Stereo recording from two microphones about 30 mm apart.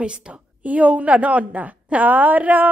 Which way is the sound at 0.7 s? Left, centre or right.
Right.